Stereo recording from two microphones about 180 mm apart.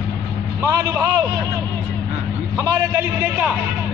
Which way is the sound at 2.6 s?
15° right (ahead or behind).